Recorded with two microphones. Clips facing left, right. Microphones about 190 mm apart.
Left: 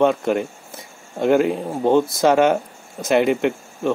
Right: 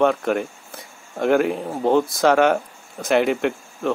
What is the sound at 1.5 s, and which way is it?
Speech, 15° left (ahead or behind).